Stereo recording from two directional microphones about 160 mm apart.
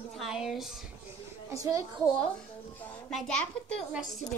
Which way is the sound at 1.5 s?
20° right (ahead or behind).